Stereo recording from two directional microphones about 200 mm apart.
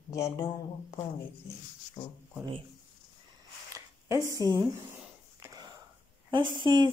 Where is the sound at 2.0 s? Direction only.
25° left (ahead or behind).